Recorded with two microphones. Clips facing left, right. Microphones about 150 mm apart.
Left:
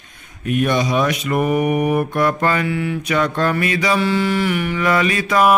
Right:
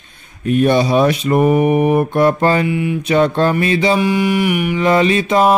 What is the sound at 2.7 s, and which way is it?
Mantra, 15° right (ahead or behind).